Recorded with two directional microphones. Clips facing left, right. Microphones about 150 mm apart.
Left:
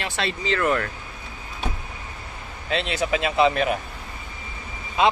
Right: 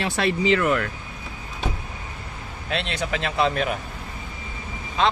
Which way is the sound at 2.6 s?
Centre (ahead or behind).